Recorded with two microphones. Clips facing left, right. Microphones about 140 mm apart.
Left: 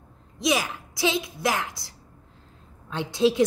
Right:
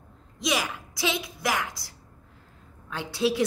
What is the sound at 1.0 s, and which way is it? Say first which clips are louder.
Speech: left 3 dB; 25° left (ahead or behind).